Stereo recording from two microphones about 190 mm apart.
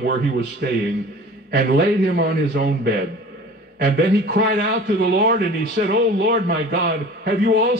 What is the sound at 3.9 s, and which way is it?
A man's voice, 60° right (ahead or behind).